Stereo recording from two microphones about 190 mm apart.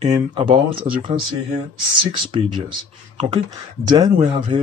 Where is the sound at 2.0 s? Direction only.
25° right (ahead or behind).